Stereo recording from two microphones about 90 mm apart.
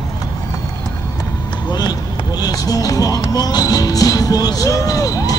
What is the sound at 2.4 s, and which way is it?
Music, 45° left (ahead or behind).